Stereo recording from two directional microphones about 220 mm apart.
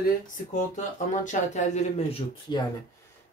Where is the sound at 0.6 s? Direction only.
35° left (ahead or behind).